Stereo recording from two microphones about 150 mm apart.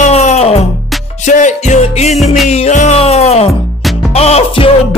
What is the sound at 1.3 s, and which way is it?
Music, 55° left (ahead or behind).